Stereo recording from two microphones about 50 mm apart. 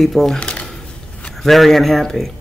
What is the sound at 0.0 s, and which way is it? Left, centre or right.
Speech, centre.